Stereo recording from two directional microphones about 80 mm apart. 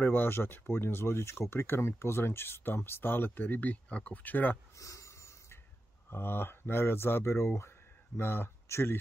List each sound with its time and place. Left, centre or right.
0.0 s speech: left
4.7 s snort: left
6.0 s speech: left